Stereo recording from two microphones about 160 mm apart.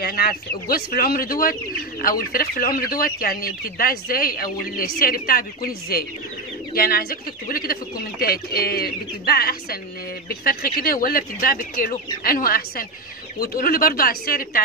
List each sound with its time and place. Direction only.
0.0 s speech: 70° left (ahead or behind)